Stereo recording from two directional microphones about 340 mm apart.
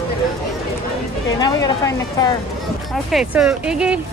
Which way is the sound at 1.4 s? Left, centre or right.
Centre.